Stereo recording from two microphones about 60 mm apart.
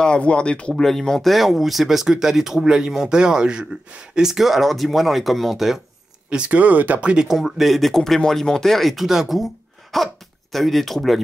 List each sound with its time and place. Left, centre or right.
0.0 s speech: centre
6.3 s speech: right
7.2 s speech: centre